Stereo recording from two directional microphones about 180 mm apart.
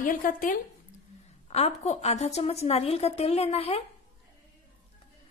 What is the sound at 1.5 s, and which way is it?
A woman's voice, 35° left (ahead or behind).